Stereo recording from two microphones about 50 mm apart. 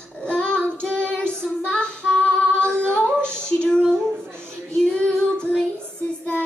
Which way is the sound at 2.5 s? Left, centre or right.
Right.